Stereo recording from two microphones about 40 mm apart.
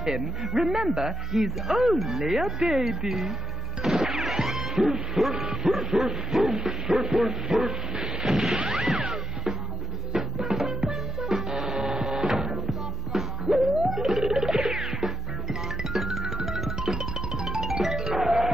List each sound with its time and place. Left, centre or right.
0.0 s bow-wow: centre
2.0 s speech: centre
3.8 s music: centre
5.3 s bow-wow: centre
7.5 s dog: centre
8.6 s music: centre
14.2 s music: centre
16.7 s music: centre